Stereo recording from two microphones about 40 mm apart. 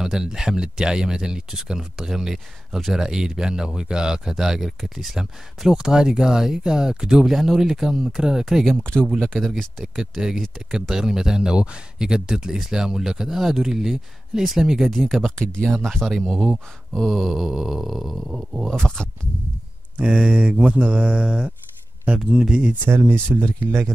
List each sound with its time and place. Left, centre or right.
0.0 s speech: centre
7.2 s speech: centre
8.9 s speech: left
9.4 s wail: centre
9.9 s speech: centre
15.3 s speech: centre
15.8 s speech: centre
16.1 s wail: centre
18.7 s speech: centre
20.1 s speech: right
20.6 s mantra: right
21.2 s speech: right
22.8 s speech: right